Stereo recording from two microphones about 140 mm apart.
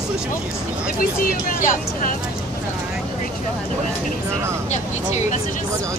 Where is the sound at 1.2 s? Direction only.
90° left; by 2.1 s 75° left (ahead or behind).